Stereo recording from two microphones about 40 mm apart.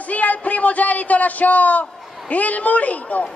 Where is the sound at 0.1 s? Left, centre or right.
Left.